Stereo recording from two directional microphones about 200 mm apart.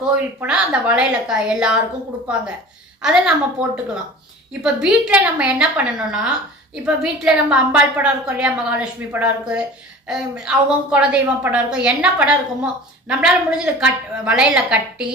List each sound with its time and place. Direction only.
0.1 s a woman's voice: 5° right (ahead or behind)
3.0 s a woman's voice: 5° right (ahead or behind)